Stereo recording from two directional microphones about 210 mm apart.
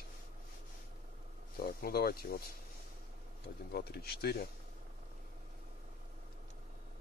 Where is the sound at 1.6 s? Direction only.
45° left (ahead or behind).